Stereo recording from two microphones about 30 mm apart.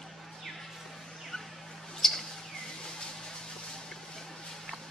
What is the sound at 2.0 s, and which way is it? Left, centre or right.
Bird, centre.